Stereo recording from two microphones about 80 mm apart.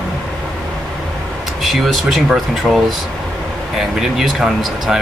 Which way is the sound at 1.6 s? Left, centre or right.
Centre.